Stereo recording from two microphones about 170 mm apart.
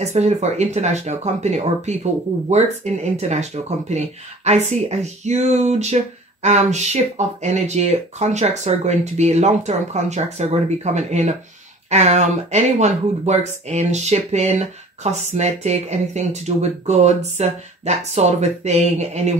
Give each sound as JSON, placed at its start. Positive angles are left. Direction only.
{"t": 0.0, "sound": "speech", "side_deg": -40}